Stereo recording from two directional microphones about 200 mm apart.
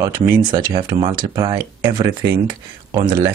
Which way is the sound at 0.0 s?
25° right (ahead or behind).